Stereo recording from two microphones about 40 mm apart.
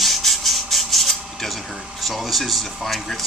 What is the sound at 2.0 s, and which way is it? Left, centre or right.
Speech, centre.